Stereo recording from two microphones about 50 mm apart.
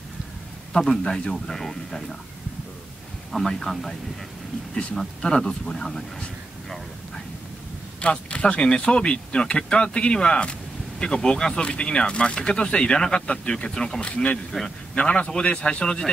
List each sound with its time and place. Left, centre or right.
0.7 s speech: centre
3.3 s speech: centre
5.2 s speech: centre
8.0 s speech: left